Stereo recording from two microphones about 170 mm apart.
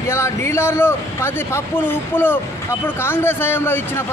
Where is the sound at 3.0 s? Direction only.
15° left (ahead or behind).